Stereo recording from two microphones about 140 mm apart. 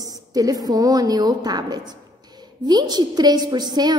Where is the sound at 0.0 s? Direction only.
25° right (ahead or behind).